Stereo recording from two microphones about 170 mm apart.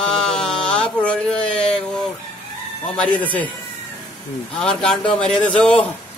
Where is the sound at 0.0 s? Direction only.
5° left (ahead or behind).